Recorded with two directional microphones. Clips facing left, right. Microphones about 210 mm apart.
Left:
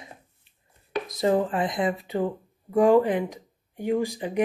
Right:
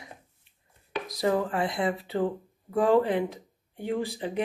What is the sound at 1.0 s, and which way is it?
Speech, 25° left (ahead or behind).